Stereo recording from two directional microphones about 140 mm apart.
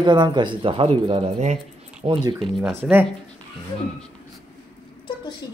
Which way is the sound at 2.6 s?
15° right (ahead or behind).